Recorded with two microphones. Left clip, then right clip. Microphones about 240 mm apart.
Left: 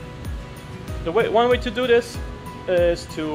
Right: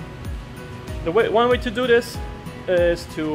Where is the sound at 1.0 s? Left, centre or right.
Centre.